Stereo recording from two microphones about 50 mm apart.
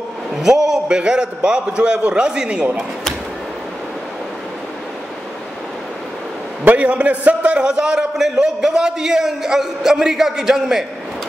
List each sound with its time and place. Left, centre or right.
0.3 s a man's voice: centre
6.6 s a man's voice: right; by 10.9 s centre